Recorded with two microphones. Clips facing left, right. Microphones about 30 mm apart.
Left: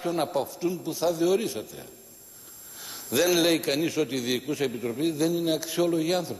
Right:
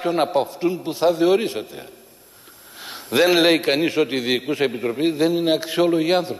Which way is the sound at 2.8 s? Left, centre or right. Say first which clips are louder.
Right 7 dB; right.